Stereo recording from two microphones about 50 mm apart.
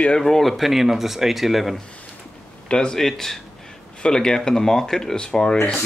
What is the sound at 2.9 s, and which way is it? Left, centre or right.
Speech, centre.